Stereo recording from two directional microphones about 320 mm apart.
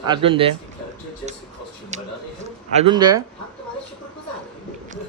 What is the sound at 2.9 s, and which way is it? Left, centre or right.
Speech, centre.